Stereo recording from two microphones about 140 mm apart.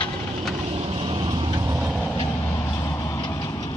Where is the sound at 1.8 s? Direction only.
5° right (ahead or behind).